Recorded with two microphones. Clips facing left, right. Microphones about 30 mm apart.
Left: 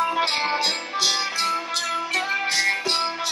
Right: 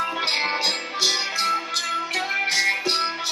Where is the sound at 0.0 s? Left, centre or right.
Centre.